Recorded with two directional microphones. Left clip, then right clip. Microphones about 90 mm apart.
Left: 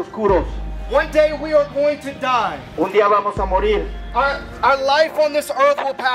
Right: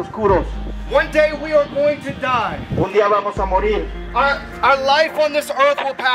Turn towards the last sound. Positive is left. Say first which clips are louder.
# even
turn(degrees=0)  # may be behind; listen again after turning